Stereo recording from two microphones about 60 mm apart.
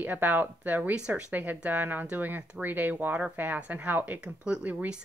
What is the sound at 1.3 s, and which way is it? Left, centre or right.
Speech, right.